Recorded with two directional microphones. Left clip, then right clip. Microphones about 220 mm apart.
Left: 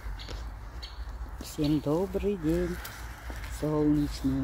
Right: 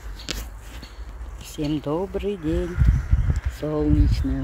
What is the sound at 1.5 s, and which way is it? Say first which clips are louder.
Speech: right 3 dB; centre (ahead or behind).